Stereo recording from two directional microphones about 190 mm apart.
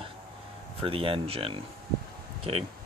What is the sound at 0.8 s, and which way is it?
Speech, 30° right (ahead or behind).